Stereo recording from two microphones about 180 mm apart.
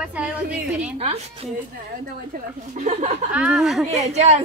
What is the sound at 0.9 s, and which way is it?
Speech, 35° right (ahead or behind).